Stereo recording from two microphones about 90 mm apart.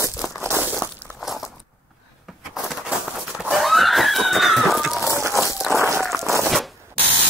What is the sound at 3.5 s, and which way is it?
Screaming, centre (ahead or behind).